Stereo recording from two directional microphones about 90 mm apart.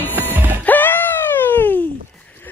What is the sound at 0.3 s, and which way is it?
Music, 20° right (ahead or behind).